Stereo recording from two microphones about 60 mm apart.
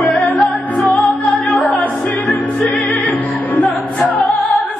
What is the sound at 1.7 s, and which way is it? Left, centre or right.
Music, left.